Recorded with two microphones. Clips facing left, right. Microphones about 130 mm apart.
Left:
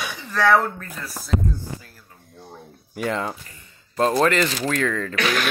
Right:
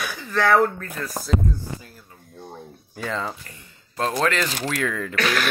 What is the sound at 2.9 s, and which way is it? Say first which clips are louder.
Speech: left 3 dB; 15° left (ahead or behind).